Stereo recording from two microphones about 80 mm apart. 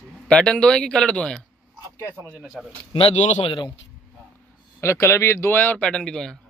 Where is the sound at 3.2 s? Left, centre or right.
Left.